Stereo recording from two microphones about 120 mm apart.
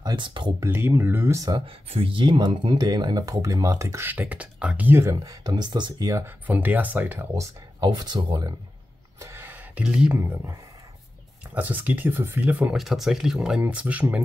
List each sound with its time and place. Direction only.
0.0 s speech: 40° right (ahead or behind)
0.6 s speech: 20° right (ahead or behind)
1.5 s speech: 50° right (ahead or behind); by 5.1 s 15° right (ahead or behind)
5.1 s speech: 30° right (ahead or behind)
6.2 s speech: 15° right (ahead or behind)
7.3 s speech: 30° right (ahead or behind)
9.2 s a sound: 20° right (ahead or behind)
11.5 s speech: 15° right (ahead or behind)
12.7 s speech: centre (ahead or behind)